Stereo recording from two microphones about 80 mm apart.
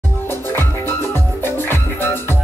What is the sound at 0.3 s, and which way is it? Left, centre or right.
Music, left.